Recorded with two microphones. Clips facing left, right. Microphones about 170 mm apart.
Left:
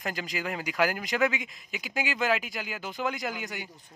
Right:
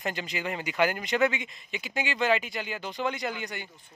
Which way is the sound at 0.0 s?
Centre (ahead or behind).